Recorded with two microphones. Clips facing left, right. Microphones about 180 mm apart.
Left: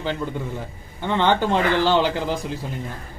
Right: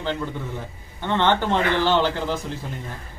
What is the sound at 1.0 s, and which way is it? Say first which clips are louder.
A man's voice: left 1 dB; 10° left (ahead or behind).